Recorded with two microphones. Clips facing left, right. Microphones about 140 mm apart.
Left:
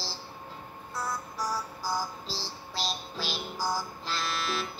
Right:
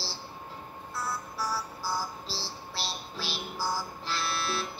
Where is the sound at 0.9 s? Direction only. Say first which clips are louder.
Left 1 dB; 15° left (ahead or behind).